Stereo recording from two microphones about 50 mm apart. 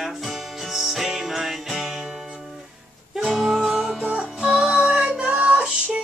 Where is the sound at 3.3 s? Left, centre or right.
Centre.